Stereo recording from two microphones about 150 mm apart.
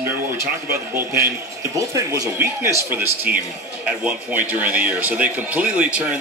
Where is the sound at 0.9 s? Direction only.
15° right (ahead or behind).